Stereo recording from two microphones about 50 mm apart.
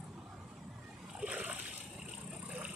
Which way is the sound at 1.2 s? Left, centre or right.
Right.